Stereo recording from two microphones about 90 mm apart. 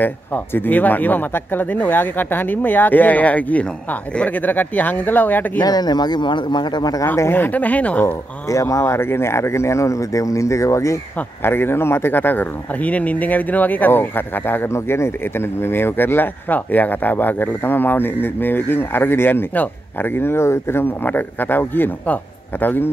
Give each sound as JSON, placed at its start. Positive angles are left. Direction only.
{"t": 0.0, "sound": "speech", "side_deg": 20}
{"t": 5.6, "sound": "speech", "side_deg": 50}
{"t": 7.2, "sound": "a woman's voice", "side_deg": 25}
{"t": 8.0, "sound": "speech", "side_deg": 35}